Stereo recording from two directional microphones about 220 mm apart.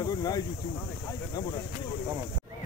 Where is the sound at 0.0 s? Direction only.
15° left (ahead or behind).